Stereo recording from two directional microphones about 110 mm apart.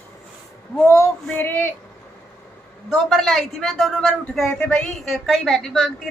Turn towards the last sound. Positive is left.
turn(degrees=0)  # may be behind; listen again after turning